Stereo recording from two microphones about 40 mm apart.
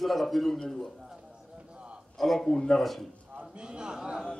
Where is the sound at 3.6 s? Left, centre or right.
Right.